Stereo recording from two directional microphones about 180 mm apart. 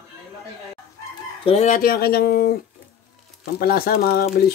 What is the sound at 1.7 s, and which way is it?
Speech, 55° left (ahead or behind).